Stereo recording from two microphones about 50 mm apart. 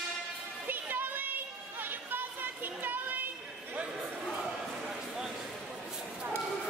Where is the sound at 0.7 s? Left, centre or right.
Right.